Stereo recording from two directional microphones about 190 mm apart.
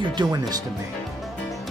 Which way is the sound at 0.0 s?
25° right (ahead or behind).